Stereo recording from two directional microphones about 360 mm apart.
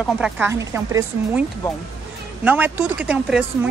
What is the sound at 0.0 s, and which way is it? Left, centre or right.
Speech, centre.